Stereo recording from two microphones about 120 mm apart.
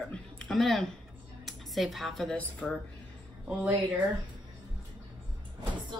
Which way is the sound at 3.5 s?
15° right (ahead or behind).